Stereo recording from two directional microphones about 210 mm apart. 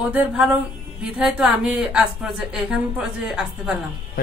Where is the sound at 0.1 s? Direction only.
5° right (ahead or behind).